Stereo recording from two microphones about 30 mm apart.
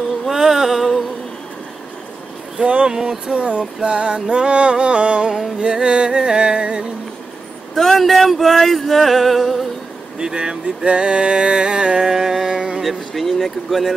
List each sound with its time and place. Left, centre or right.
0.3 s music: centre
2.6 s music: right
2.9 s speech: centre
3.3 s a sound: right
3.9 s music: right
7.7 s speech: centre
8.0 s a sound: centre
10.1 s speech: right
10.9 s music: right
12.1 s speech: centre
12.8 s a sound: centre